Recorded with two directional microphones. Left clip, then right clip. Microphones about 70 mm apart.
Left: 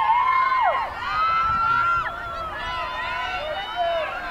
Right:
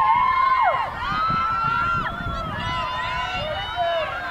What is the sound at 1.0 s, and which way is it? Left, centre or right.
Run, centre.